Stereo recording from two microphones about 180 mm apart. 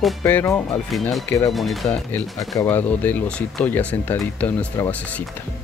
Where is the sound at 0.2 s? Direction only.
15° left (ahead or behind).